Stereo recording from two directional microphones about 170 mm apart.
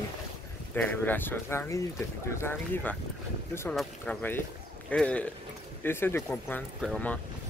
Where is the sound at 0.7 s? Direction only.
10° left (ahead or behind).